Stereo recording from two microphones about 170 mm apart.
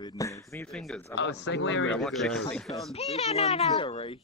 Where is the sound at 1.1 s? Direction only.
90° left.